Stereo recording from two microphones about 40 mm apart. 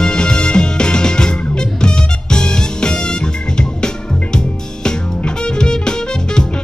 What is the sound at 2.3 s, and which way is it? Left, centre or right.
Music, left.